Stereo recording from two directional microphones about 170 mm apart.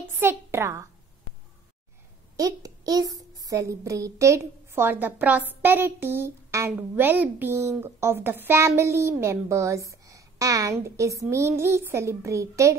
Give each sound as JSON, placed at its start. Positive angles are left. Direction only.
{"t": 0.2, "sound": "a child's voice", "side_deg": -15}
{"t": 2.3, "sound": "a child's voice", "side_deg": -20}